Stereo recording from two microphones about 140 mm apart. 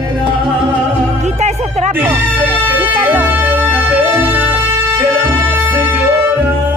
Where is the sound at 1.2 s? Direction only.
55° right (ahead or behind).